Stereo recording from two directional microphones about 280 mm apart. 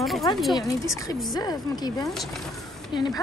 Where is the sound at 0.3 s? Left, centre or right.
Centre.